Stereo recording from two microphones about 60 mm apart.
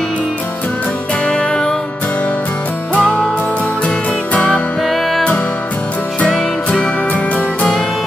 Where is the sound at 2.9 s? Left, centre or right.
Centre.